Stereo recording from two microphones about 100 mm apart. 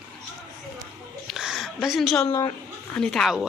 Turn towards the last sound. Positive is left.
turn(degrees=5)  # may be behind; listen again after turning